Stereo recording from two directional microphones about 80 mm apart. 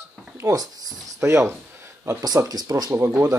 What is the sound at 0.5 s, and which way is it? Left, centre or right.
Speech, right.